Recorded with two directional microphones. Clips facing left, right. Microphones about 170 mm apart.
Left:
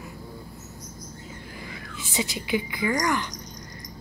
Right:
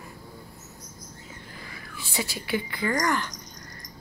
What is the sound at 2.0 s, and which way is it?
A woman's voice, 20° left (ahead or behind).